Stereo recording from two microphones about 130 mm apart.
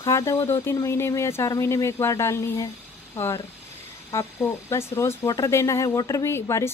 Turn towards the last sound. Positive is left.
turn(degrees=20)  # may be behind; listen again after turning